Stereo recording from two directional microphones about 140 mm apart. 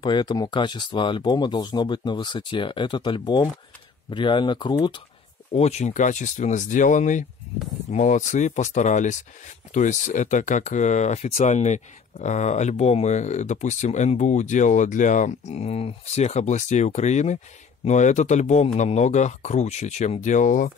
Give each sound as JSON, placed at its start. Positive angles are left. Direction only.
{"t": 0.0, "sound": "speech", "side_deg": 30}
{"t": 5.5, "sound": "speech", "side_deg": 50}